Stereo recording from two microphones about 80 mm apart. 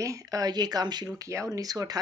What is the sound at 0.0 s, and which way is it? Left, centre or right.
Speech, right.